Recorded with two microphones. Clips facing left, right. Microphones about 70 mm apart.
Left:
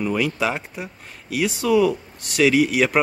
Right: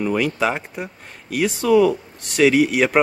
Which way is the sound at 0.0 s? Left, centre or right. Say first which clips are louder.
Right 2 dB; centre.